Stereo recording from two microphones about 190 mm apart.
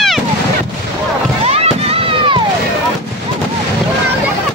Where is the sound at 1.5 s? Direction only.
30° right (ahead or behind).